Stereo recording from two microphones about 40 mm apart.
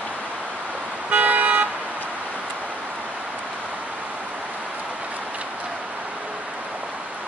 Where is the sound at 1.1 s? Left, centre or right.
Right.